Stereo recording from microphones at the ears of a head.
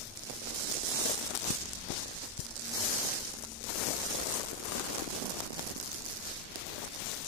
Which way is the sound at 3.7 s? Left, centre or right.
Left.